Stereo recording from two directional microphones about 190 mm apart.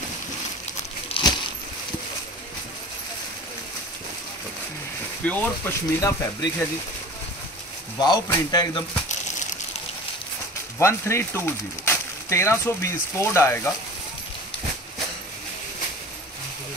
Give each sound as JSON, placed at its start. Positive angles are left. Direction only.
{"t": 1.0, "sound": "a sound", "side_deg": 25}
{"t": 5.2, "sound": "speech", "side_deg": 10}
{"t": 8.0, "sound": "speech", "side_deg": 20}
{"t": 10.8, "sound": "speech", "side_deg": 15}